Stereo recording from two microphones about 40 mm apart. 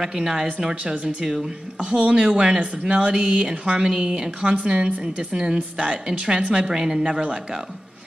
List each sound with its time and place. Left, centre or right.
0.0 s speech: right